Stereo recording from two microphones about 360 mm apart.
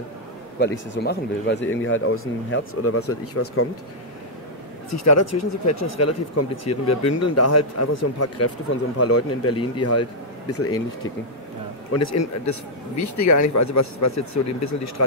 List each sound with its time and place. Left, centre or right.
1.0 s speech: left
4.9 s speech: left
11.9 s speech: left